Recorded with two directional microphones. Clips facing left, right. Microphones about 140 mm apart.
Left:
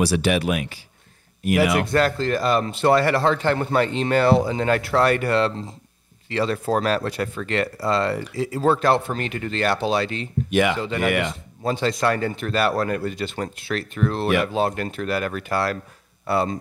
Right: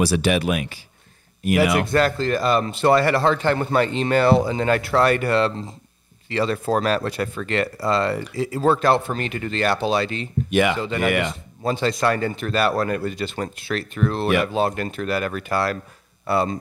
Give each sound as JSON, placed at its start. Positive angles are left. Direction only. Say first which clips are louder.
{"t": 0.0, "sound": "speech", "louder": "right 1 dB", "side_deg": -20}